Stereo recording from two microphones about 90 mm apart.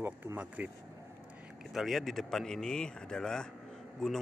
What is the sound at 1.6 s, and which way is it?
Speech, centre (ahead or behind).